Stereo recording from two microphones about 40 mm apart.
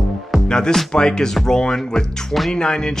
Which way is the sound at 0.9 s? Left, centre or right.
Centre.